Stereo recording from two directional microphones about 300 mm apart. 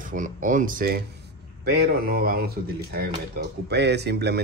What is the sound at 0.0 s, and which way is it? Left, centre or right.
Speech, right.